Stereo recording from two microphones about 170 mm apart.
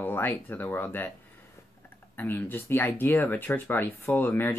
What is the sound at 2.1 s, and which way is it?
Speech, 10° left (ahead or behind).